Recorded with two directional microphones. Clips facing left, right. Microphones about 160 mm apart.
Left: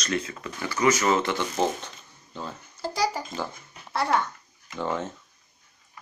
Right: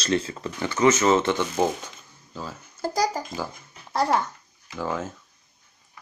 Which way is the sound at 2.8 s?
50° right (ahead or behind).